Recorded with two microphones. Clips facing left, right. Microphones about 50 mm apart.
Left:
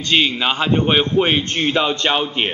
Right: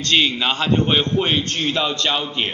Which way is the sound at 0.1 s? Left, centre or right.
Centre.